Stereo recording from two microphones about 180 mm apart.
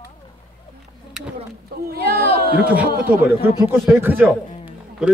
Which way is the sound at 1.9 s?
60° right (ahead or behind).